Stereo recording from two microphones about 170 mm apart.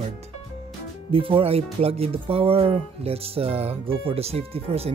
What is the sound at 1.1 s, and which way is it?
Speech, 30° right (ahead or behind).